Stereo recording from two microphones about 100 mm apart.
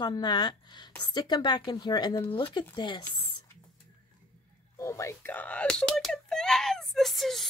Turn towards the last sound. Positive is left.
turn(degrees=0)  # may be behind; listen again after turning